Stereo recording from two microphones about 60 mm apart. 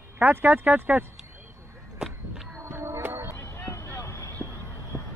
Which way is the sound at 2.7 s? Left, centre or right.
Right.